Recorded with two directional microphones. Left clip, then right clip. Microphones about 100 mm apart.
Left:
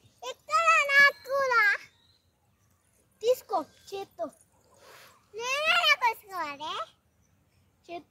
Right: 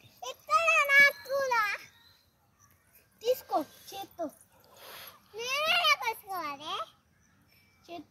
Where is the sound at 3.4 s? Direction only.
20° left (ahead or behind).